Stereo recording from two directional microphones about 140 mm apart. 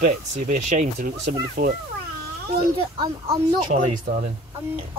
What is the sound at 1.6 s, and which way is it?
Speech, 90° right.